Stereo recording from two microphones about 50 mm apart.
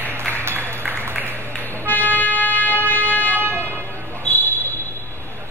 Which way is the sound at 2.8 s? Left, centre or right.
Left.